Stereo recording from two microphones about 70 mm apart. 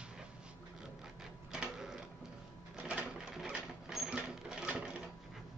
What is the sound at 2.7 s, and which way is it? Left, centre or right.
Sewing machine, centre.